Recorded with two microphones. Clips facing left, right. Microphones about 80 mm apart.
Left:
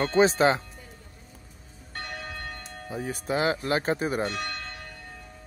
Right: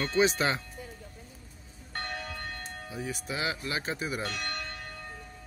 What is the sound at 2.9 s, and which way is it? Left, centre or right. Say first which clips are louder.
Speech: left 7 dB; left.